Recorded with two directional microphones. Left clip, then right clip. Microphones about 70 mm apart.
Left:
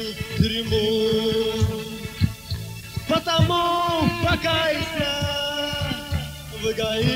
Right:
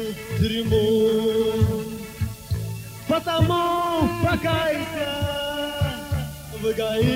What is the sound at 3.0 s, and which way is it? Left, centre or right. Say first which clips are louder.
Speech: left 1 dB; left.